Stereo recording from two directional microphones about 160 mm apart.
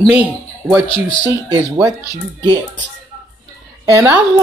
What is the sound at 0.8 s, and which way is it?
Speech, 35° left (ahead or behind).